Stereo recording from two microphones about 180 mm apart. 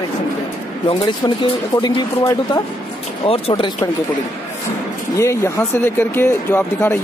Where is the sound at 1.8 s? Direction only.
15° left (ahead or behind).